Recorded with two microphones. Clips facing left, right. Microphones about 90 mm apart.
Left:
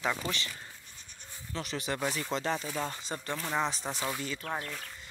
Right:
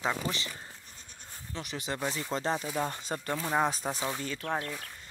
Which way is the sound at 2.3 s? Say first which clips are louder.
Right 1 dB; 30° right (ahead or behind).